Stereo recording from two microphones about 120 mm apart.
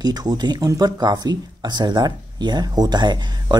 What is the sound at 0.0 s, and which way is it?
Speech, 35° right (ahead or behind).